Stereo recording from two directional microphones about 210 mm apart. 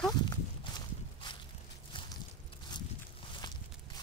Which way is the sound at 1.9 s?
25° left (ahead or behind).